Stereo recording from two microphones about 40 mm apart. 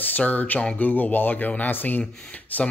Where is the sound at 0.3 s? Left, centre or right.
Left.